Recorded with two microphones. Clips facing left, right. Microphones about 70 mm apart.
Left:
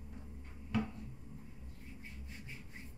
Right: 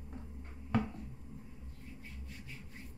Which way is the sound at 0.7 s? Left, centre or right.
Right.